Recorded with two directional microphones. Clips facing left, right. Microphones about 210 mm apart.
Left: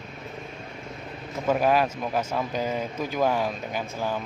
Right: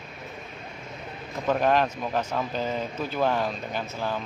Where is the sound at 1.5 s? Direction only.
10° left (ahead or behind).